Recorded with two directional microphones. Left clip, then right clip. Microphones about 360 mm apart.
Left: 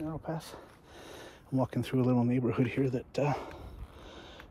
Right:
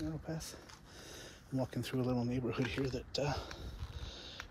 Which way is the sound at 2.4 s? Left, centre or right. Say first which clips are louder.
Left 6 dB; centre.